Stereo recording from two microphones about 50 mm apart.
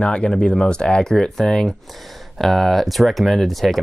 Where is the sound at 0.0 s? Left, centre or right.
Left.